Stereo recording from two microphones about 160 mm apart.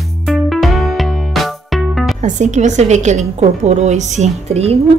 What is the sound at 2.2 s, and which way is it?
A woman's voice, 50° right (ahead or behind).